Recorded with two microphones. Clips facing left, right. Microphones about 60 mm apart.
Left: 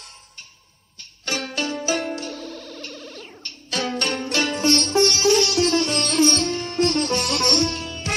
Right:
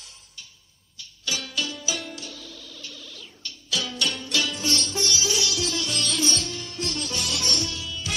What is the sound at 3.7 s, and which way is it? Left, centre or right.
Music, left.